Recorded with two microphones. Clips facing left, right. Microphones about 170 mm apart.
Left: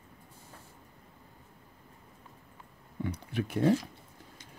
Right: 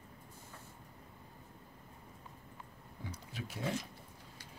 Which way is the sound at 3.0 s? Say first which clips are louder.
Left 12 dB; 60° left (ahead or behind).